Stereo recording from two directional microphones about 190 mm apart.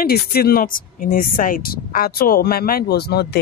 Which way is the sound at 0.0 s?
55° left (ahead or behind).